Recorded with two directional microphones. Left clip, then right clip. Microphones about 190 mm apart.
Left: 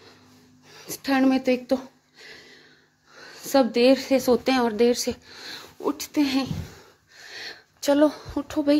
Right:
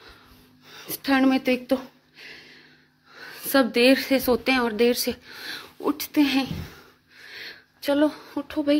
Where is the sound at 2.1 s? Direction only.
15° left (ahead or behind).